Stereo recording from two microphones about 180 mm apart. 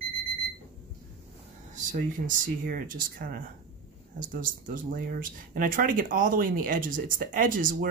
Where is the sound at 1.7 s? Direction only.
45° right (ahead or behind).